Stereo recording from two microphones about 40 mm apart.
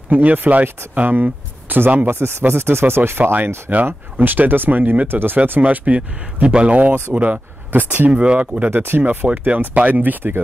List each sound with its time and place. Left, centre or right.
0.1 s speech: right
2.0 s speech: right
3.1 s speech: right
3.8 s speech: right
5.0 s speech: right
5.6 s speech: right
8.1 s speech: right
8.6 s speech: right
9.0 s speech: right
9.8 s speech: right